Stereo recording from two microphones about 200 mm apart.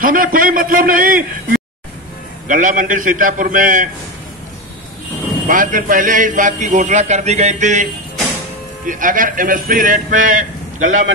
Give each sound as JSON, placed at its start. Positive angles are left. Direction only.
{"t": 0.0, "sound": "a man's voice", "side_deg": -45}
{"t": 5.5, "sound": "a man's voice", "side_deg": -40}